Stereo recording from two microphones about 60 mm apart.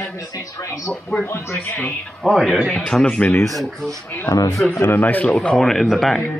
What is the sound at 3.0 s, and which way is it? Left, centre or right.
Speech, left.